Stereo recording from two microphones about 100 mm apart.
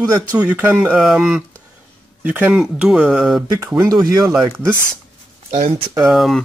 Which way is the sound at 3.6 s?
30° right (ahead or behind).